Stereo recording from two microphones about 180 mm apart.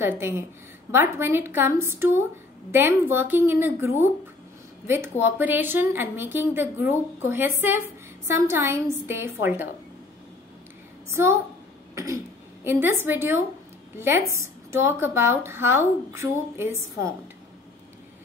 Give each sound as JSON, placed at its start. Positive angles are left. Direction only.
{"t": 0.0, "sound": "a woman's voice", "side_deg": -15}
{"t": 11.1, "sound": "a woman's voice", "side_deg": -15}
{"t": 11.9, "sound": "throat clearing", "side_deg": -15}
{"t": 12.6, "sound": "a woman's voice", "side_deg": -15}